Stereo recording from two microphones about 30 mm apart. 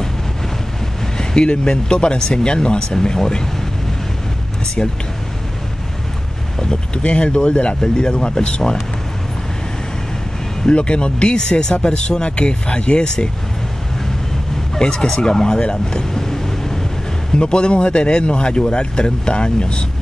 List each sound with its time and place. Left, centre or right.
1.1 s a sound: left
1.5 s speech: left
6.6 s speech: left
7.8 s speech: left
10.7 s speech: left
14.8 s speech: left
15.6 s vehicle: left
17.3 s speech: left